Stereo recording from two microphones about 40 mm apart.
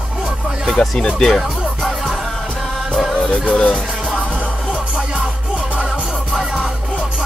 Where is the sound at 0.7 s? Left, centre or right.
Left.